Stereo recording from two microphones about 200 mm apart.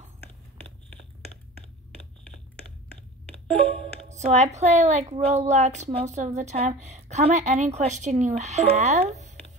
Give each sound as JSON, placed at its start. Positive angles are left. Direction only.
{"t": 3.6, "sound": "speech", "side_deg": -35}